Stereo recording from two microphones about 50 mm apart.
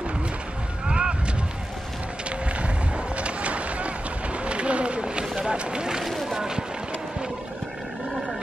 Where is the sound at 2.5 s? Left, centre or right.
Right.